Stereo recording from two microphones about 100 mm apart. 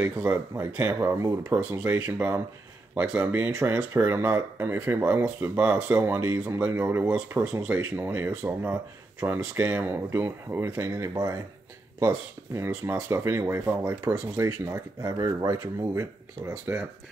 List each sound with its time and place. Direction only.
0.0 s speech: 20° right (ahead or behind)
2.9 s speech: 10° right (ahead or behind)